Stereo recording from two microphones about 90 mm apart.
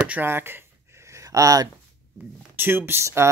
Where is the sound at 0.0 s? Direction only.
20° right (ahead or behind).